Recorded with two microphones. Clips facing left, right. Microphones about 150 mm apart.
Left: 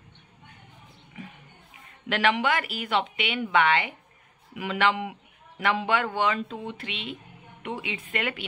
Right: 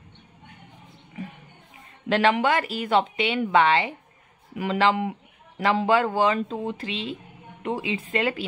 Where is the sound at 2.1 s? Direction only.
35° right (ahead or behind).